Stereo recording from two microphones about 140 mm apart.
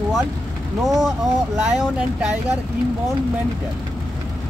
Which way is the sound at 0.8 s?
Centre (ahead or behind).